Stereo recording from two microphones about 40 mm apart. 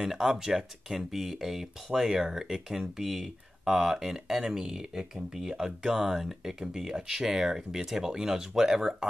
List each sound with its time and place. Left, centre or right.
0.4 s speech: centre
6.6 s speech: centre